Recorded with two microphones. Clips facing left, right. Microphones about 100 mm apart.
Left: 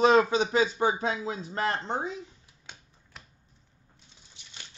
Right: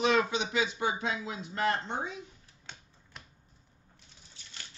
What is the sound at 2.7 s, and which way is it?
Typewriter, 10° left (ahead or behind).